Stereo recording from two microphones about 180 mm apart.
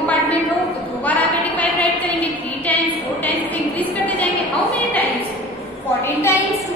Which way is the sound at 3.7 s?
10° left (ahead or behind).